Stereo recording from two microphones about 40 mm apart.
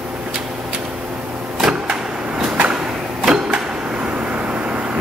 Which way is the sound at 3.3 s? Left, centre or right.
Centre.